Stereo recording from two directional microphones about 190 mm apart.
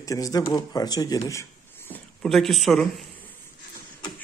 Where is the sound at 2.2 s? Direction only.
Centre (ahead or behind).